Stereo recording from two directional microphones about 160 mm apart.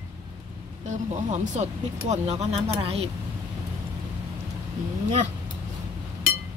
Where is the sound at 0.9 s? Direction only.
50° right (ahead or behind).